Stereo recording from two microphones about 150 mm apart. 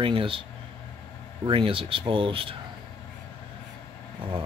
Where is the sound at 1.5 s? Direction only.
35° right (ahead or behind).